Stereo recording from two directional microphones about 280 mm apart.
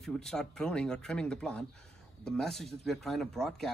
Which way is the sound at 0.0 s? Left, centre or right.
Centre.